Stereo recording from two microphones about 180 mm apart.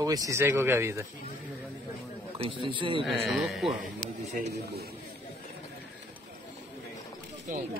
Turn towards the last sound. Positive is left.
turn(degrees=-45)  # may be behind; listen again after turning